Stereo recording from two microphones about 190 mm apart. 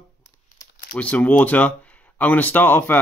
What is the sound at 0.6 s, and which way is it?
Crumpling, 40° left (ahead or behind).